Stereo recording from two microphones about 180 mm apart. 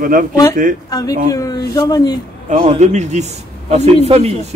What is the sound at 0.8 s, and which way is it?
Speech, 20° left (ahead or behind).